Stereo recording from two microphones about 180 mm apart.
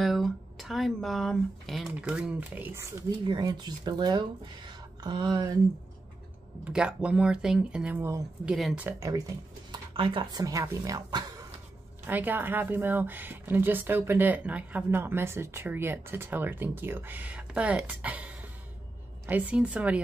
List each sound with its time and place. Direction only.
0.0 s a woman's voice: centre (ahead or behind); by 5.6 s 20° right (ahead or behind)
6.6 s speech: 5° right (ahead or behind)
8.5 s speech: centre (ahead or behind)
8.8 s speech: 20° right (ahead or behind)
9.9 s a woman's voice: 30° right (ahead or behind)
12.1 s speech: 10° right (ahead or behind)